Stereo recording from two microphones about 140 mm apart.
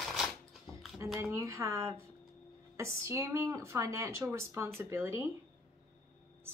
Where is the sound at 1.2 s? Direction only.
20° right (ahead or behind).